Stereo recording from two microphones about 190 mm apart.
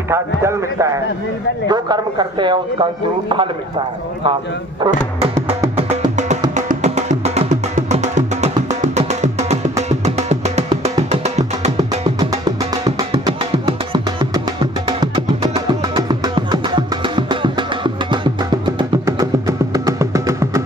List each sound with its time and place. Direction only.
0.1 s a man's voice: 15° right (ahead or behind); by 5.9 s 30° right (ahead or behind)
6.5 s music: 40° right (ahead or behind)
12.2 s music: 20° right (ahead or behind)